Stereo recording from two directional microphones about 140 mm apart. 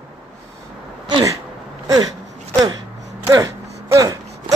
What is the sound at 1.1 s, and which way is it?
Sneeze, 25° right (ahead or behind).